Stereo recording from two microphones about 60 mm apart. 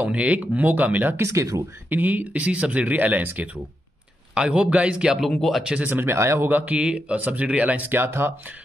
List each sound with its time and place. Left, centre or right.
0.0 s speech: right
1.1 s speech: right
1.9 s speech: right
5.0 s speech: centre
5.9 s speech: right
6.1 s speech: right
6.5 s speech: right